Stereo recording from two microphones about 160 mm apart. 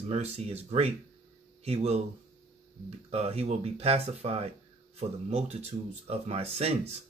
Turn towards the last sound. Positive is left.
turn(degrees=-40)  # may be behind; listen again after turning